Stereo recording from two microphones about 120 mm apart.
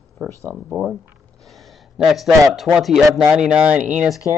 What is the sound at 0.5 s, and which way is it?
Speech, 15° left (ahead or behind).